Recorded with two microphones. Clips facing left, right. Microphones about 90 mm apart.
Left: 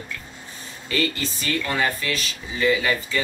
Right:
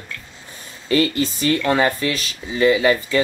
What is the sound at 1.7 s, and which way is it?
Speech, 30° right (ahead or behind).